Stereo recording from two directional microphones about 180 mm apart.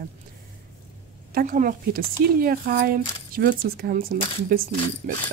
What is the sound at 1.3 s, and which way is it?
Speech, 45° right (ahead or behind).